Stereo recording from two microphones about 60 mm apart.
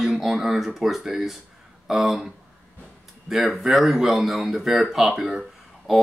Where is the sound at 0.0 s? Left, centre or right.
Centre.